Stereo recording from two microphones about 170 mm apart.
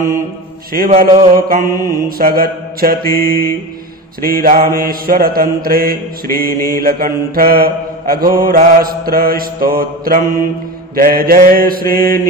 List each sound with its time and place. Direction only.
0.7 s mantra: 55° right (ahead or behind)